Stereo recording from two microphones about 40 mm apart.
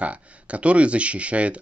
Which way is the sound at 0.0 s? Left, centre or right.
Right.